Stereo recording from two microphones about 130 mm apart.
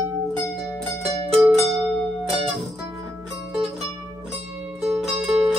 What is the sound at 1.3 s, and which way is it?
Music, centre (ahead or behind).